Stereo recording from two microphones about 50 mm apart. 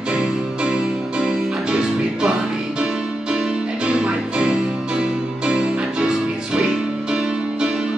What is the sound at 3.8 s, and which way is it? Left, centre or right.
Music, right.